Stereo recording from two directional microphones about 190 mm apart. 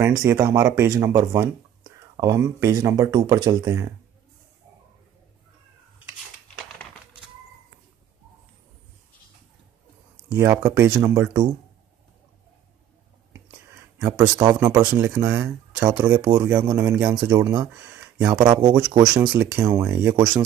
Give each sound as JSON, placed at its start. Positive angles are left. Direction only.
{"t": 0.2, "sound": "speech", "side_deg": -15}
{"t": 10.3, "sound": "speech", "side_deg": -15}
{"t": 13.9, "sound": "speech", "side_deg": -10}
{"t": 14.9, "sound": "speech", "side_deg": -10}
{"t": 16.0, "sound": "speech", "side_deg": -25}
{"t": 17.1, "sound": "speech", "side_deg": -25}
{"t": 17.6, "sound": "a sound", "side_deg": -10}
{"t": 18.2, "sound": "speech", "side_deg": -20}